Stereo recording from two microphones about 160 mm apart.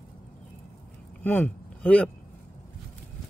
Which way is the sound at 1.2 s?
10° left (ahead or behind).